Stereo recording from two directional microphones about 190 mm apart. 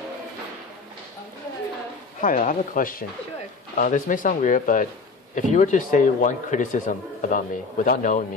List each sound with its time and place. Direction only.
2.2 s speech: 45° left (ahead or behind)